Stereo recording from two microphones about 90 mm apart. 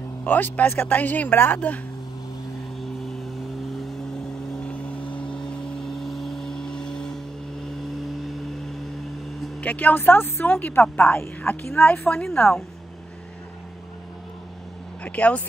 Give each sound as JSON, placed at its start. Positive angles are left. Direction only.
{"t": 0.2, "sound": "speech", "side_deg": 20}
{"t": 5.1, "sound": "vehicle", "side_deg": 10}
{"t": 9.6, "sound": "speech", "side_deg": 15}
{"t": 12.2, "sound": "speech", "side_deg": 5}
{"t": 15.0, "sound": "speech", "side_deg": 15}